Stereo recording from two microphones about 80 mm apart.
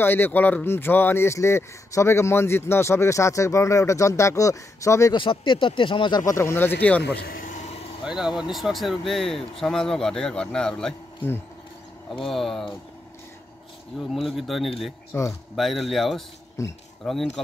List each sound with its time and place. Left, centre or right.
0.0 s speech: left
5.1 s speech: left
6.3 s speech: left
8.0 s speech: centre
12.3 s speech: centre
13.9 s speech: centre
15.1 s speech: left
15.5 s speech: centre
16.6 s speech: left
17.0 s speech: centre